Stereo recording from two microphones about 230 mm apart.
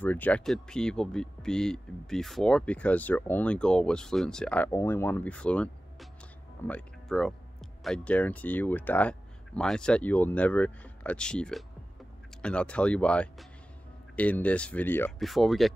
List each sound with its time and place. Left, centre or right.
0.0 s speech: centre